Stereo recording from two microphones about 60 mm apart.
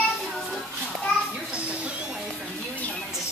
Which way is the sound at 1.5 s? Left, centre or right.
Right.